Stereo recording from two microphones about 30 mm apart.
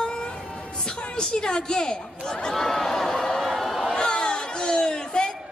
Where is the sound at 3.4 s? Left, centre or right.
Centre.